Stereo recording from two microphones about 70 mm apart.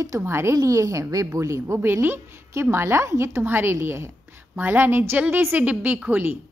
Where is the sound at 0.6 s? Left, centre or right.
Right.